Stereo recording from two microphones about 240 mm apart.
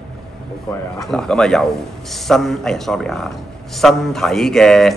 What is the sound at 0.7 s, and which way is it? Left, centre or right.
A man's voice, centre.